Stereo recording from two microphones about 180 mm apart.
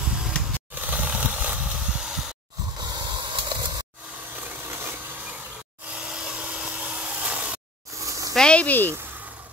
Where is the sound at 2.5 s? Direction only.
20° right (ahead or behind).